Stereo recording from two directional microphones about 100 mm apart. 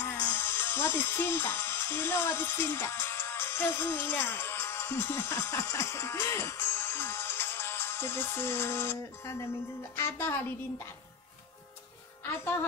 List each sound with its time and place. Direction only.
0.0 s a woman's voice: 20° left (ahead or behind)